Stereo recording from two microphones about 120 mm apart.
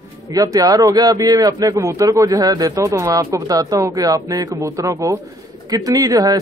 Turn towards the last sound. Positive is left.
turn(degrees=-30)  # may be behind; listen again after turning